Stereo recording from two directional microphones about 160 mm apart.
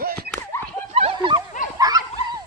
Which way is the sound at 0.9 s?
35° right (ahead or behind).